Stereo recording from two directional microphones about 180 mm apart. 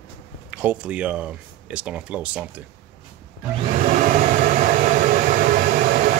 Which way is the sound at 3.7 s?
45° right (ahead or behind).